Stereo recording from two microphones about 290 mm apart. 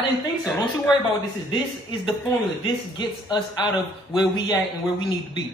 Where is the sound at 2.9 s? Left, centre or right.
Centre.